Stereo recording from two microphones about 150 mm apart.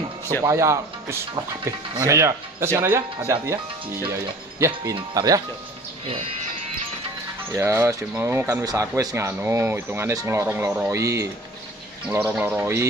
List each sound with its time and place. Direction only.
0.4 s speech: 20° right (ahead or behind)
6.0 s speech: 40° right (ahead or behind)
7.5 s speech: 15° right (ahead or behind)